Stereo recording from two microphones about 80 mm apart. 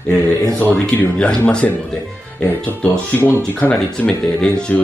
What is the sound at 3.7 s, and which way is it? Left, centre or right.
Speech, centre.